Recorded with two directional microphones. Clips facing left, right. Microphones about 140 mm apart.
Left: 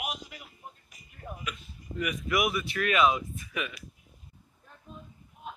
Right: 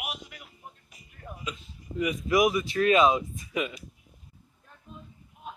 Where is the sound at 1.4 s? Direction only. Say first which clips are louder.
Right 1 dB; 25° right (ahead or behind).